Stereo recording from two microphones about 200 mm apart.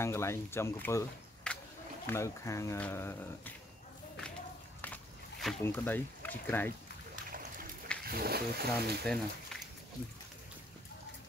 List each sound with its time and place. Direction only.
0.0 s speech: 15° left (ahead or behind)
4.8 s a sound: 5° left (ahead or behind)
5.6 s speech: 10° left (ahead or behind)
8.0 s speech: 50° right (ahead or behind)
9.0 s speech: 5° left (ahead or behind)